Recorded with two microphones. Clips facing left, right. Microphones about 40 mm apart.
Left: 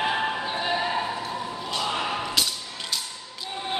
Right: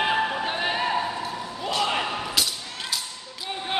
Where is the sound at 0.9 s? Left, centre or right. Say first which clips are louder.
Right 1 dB; centre.